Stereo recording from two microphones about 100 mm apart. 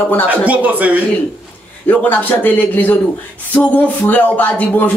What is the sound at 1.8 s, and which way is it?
A man's voice, 15° left (ahead or behind).